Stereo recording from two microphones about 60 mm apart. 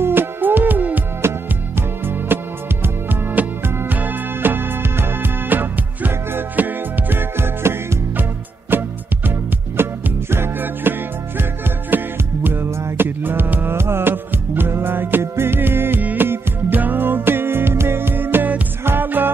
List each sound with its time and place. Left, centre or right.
0.0 s music: right
1.2 s music: right